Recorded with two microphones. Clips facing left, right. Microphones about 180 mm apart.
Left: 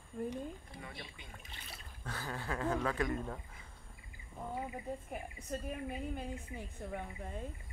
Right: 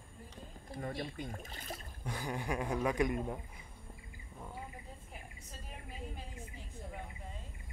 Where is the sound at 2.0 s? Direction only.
15° right (ahead or behind).